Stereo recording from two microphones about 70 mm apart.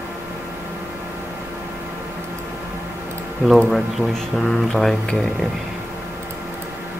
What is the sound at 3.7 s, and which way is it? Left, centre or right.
Speech, centre.